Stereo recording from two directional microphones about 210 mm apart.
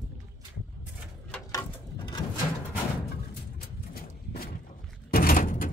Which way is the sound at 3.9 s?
45° left (ahead or behind).